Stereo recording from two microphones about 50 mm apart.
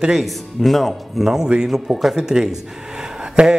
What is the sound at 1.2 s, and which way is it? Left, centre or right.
A man's voice, centre.